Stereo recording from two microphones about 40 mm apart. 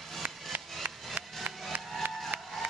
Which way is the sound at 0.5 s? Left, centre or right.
Right.